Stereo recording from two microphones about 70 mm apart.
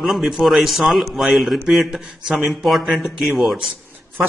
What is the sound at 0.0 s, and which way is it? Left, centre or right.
Speech, centre.